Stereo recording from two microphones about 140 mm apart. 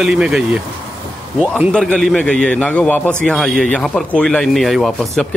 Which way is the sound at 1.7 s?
5° left (ahead or behind).